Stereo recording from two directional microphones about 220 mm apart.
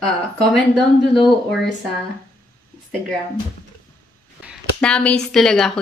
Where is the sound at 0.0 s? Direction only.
Centre (ahead or behind).